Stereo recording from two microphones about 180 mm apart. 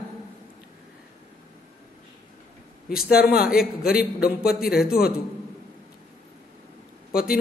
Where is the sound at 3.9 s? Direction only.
55° left (ahead or behind).